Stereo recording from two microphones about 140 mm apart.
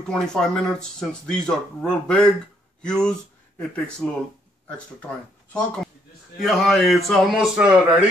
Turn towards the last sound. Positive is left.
turn(degrees=-5)  # may be behind; listen again after turning